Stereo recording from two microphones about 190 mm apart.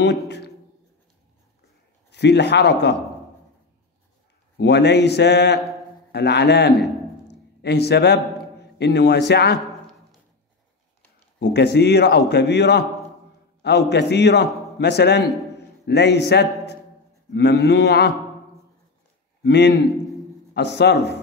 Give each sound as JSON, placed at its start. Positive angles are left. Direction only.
{"t": 2.0, "sound": "speech", "side_deg": 65}
{"t": 4.6, "sound": "a man's voice", "side_deg": 65}
{"t": 11.3, "sound": "a man's voice", "side_deg": 65}
{"t": 19.4, "sound": "a man's voice", "side_deg": 65}